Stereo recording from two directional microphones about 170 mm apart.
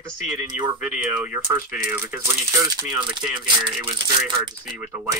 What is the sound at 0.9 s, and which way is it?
Speech, 10° right (ahead or behind).